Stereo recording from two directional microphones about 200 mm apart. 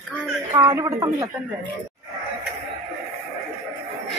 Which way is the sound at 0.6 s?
15° right (ahead or behind).